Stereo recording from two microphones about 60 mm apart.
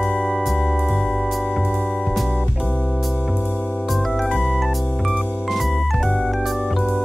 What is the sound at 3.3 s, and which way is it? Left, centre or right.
Music, left.